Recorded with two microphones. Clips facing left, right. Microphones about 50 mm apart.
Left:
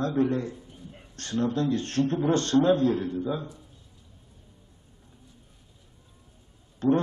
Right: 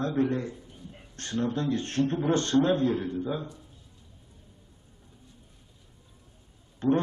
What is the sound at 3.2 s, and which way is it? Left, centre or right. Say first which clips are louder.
Speech: left 2 dB; centre.